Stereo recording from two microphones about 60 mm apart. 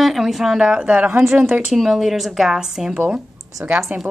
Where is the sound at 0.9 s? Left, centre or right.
Right.